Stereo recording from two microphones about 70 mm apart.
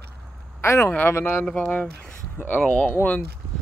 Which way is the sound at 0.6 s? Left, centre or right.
Left.